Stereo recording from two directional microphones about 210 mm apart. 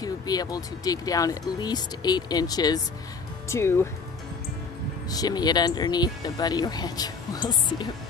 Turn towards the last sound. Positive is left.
turn(degrees=20)  # may be behind; listen again after turning